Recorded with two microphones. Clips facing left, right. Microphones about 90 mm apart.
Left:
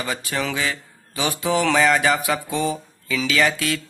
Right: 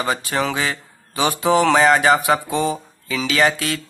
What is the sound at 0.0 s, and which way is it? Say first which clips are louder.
Speech: right 5 dB; 35° right (ahead or behind).